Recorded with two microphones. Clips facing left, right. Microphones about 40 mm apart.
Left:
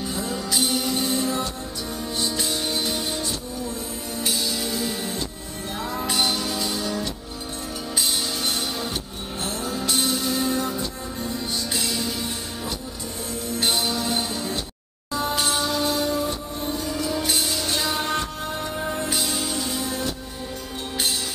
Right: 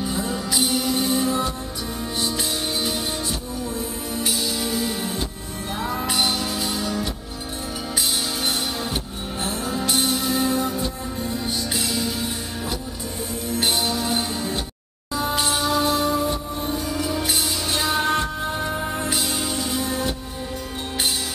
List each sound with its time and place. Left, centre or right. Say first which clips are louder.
0.0 s music: right 2 dB; centre
8.4 s music: right 2 dB; centre
11.7 s music: right 1 dB; centre